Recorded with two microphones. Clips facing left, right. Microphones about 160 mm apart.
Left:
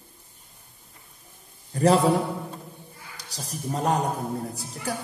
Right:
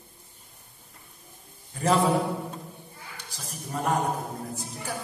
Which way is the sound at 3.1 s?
35° left (ahead or behind).